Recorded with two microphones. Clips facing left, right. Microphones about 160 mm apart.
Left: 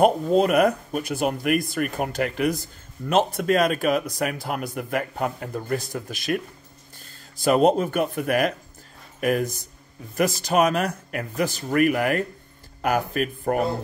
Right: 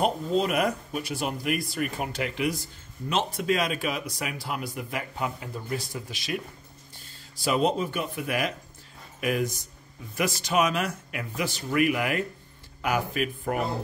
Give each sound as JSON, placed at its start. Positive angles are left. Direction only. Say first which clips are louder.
{"t": 0.0, "sound": "speech", "louder": "left 7 dB", "side_deg": 50}
{"t": 7.4, "sound": "speech", "louder": "left 6 dB", "side_deg": 50}